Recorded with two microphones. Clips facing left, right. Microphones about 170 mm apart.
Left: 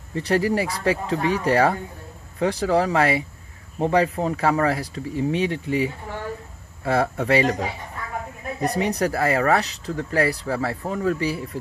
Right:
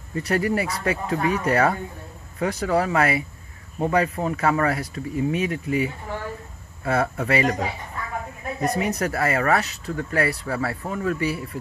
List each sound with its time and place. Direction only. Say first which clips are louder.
0.1 s speech: left 2 dB; 30° left (ahead or behind)
6.9 s speech: left 2 dB; 30° left (ahead or behind)
8.5 s speech: left 1 dB; 30° left (ahead or behind)